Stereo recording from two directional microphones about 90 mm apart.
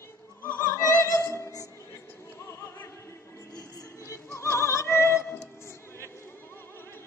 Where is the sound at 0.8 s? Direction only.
35° left (ahead or behind).